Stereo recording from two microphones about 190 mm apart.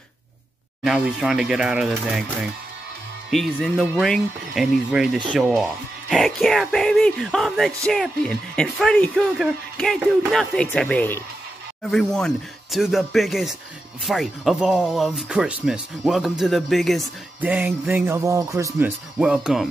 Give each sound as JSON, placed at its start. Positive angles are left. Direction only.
{"t": 0.8, "sound": "speech", "side_deg": -5}
{"t": 5.3, "sound": "speech", "side_deg": -15}
{"t": 5.6, "sound": "speech", "side_deg": 0}